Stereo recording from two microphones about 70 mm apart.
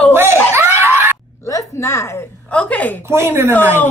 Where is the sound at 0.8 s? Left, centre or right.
Right.